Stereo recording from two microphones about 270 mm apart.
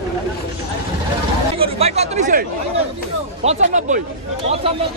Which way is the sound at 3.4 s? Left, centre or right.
Right.